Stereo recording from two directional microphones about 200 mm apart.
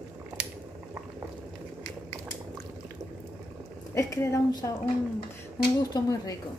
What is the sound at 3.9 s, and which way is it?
Speech, 15° left (ahead or behind).